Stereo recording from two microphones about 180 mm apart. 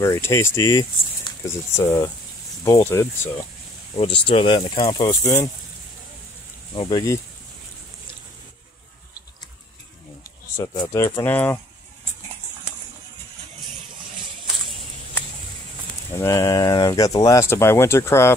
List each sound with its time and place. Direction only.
0.0 s speech: 15° left (ahead or behind)
3.9 s speech: 30° left (ahead or behind)
6.7 s speech: 25° left (ahead or behind)
10.6 s speech: 20° left (ahead or behind)
16.2 s speech: 15° left (ahead or behind)